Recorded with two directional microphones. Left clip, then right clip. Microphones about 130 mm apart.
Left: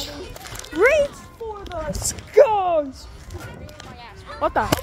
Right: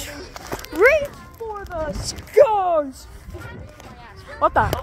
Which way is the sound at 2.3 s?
65° right (ahead or behind).